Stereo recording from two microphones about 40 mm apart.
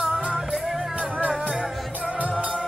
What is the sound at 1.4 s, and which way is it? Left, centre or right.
Music, centre.